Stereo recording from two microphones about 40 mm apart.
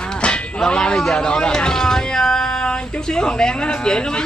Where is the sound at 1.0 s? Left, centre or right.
Centre.